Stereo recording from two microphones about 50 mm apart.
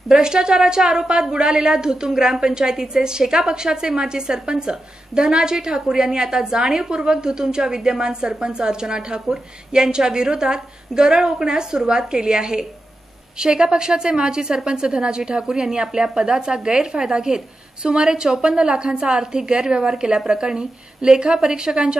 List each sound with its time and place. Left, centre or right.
0.1 s a woman's voice: centre